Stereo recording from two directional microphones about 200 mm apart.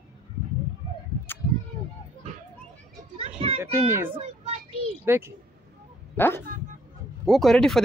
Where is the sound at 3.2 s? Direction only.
30° right (ahead or behind).